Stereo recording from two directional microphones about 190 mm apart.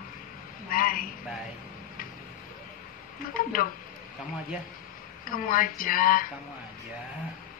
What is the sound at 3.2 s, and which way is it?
Speech, 45° left (ahead or behind).